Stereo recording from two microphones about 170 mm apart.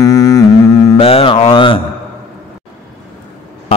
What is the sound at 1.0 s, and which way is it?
Mantra, 35° left (ahead or behind).